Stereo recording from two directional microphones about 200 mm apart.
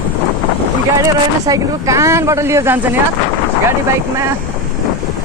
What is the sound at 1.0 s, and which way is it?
Speech, 15° right (ahead or behind).